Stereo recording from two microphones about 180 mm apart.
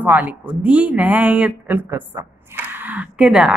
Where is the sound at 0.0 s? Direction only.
10° right (ahead or behind).